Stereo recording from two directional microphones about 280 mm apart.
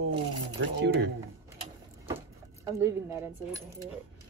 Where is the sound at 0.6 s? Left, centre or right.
Right.